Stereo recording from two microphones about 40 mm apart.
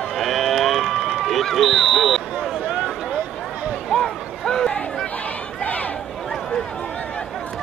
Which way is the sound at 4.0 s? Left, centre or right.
Centre.